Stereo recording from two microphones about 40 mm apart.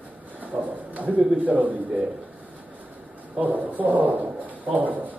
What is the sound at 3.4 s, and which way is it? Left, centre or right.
A man's voice, right.